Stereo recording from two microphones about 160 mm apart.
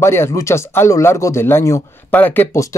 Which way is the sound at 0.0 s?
15° left (ahead or behind).